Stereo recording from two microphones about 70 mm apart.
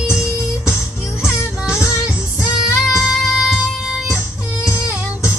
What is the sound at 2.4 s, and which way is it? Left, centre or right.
Music, centre.